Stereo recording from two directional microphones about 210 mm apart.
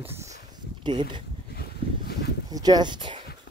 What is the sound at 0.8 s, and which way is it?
Speech, 20° right (ahead or behind).